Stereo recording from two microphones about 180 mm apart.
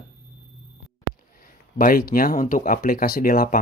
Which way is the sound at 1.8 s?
50° left (ahead or behind).